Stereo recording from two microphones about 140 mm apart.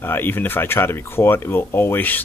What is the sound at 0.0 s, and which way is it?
Speech, 15° left (ahead or behind).